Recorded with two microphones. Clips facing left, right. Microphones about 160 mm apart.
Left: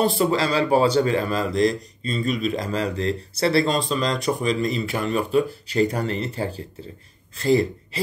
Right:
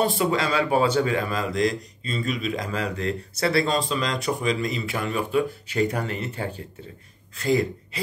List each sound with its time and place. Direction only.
0.2 s speech: 35° left (ahead or behind)